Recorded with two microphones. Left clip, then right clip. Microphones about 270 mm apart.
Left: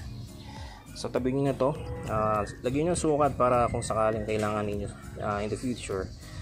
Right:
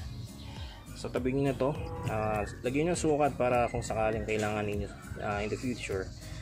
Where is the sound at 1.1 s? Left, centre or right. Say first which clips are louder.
Left 3 dB; centre.